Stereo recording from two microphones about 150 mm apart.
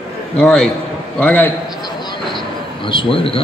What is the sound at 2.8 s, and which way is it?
Speech, 35° left (ahead or behind).